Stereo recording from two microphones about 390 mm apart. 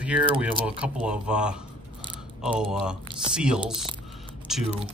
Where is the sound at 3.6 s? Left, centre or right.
Centre.